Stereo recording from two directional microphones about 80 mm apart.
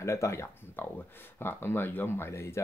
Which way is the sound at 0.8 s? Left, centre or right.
Left.